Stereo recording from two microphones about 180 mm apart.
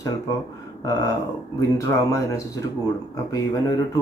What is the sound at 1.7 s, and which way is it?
Speech, 15° left (ahead or behind).